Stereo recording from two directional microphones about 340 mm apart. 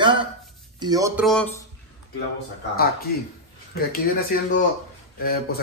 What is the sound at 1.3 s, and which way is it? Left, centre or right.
Speech, centre.